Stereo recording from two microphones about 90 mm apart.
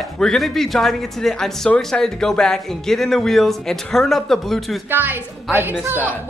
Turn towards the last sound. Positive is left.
turn(degrees=-20)  # may be behind; listen again after turning